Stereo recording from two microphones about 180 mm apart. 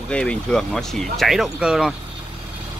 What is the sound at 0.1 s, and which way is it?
Speech, 5° left (ahead or behind).